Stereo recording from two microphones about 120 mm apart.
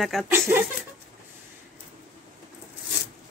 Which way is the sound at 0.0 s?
Centre (ahead or behind).